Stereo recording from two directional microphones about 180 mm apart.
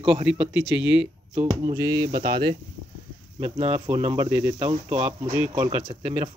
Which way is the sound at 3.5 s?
35° right (ahead or behind).